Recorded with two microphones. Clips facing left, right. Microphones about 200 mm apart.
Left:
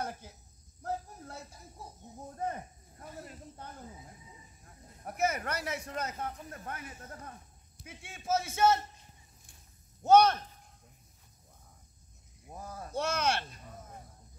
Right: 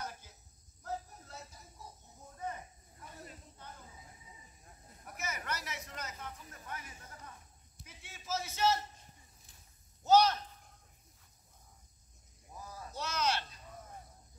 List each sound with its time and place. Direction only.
0.0 s cricket: 55° left (ahead or behind)
2.3 s cricket: 50° left (ahead or behind)
5.0 s snake: 55° left (ahead or behind)
5.9 s speech: 55° left (ahead or behind)
10.0 s speech: 55° left (ahead or behind)
12.5 s a sound: 55° left (ahead or behind)